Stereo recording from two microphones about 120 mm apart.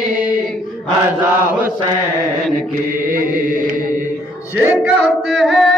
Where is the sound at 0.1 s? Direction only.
10° right (ahead or behind).